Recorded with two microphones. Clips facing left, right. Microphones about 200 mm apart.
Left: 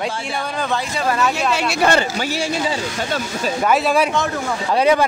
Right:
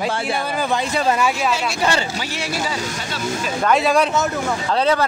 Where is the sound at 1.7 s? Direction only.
55° left (ahead or behind).